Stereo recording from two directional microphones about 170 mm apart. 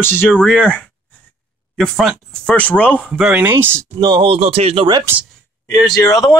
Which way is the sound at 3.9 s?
30° right (ahead or behind).